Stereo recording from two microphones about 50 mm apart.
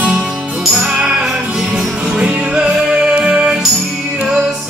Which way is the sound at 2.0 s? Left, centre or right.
Right.